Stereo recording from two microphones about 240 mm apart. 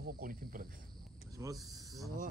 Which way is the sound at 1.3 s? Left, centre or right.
Centre.